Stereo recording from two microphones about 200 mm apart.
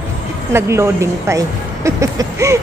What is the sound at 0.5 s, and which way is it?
A woman's voice, 15° right (ahead or behind).